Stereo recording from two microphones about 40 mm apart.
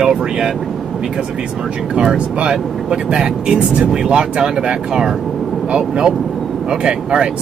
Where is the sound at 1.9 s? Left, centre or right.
Right.